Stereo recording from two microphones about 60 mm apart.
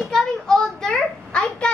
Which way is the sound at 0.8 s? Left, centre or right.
Centre.